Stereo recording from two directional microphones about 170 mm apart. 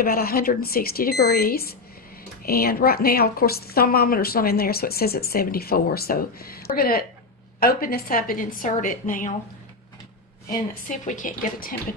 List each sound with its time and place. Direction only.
0.0 s a woman's voice: 60° left (ahead or behind)
10.5 s a woman's voice: 55° left (ahead or behind)